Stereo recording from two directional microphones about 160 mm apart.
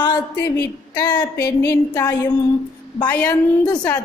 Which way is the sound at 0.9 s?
10° left (ahead or behind).